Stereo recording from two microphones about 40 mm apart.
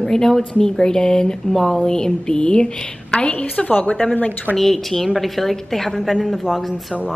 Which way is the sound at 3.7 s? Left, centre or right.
Left.